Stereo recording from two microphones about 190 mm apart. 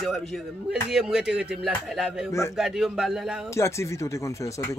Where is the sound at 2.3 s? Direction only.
15° left (ahead or behind).